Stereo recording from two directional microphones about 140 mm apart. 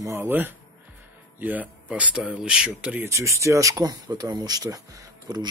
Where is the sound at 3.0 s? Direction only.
20° right (ahead or behind).